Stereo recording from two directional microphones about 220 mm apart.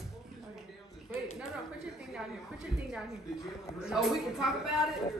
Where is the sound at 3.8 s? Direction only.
Centre (ahead or behind).